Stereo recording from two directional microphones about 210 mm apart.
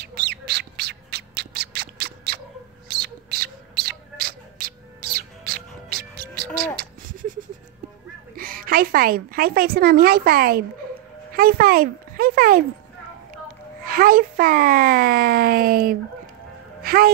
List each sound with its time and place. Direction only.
0.0 s squawk: 50° right (ahead or behind)
2.9 s a sound: 50° right (ahead or behind)
8.4 s a woman's voice: 45° right (ahead or behind)
13.8 s a child's voice: 45° right (ahead or behind)
16.8 s music: 45° right (ahead or behind)